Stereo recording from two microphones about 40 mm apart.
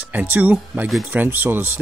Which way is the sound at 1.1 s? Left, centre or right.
Right.